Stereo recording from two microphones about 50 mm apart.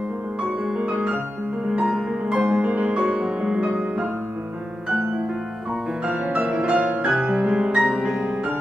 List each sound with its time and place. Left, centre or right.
0.4 s music: right
2.2 s music: right
6.0 s music: right